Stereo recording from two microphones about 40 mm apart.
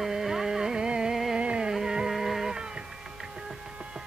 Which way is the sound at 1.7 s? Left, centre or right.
Centre.